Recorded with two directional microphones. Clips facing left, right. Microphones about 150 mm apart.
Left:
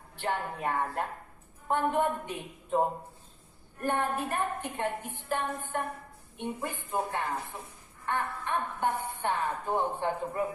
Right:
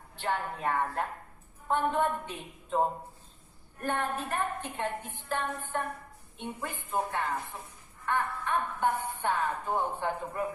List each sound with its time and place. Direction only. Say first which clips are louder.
0.2 s a woman's voice: even; 15° left (ahead or behind)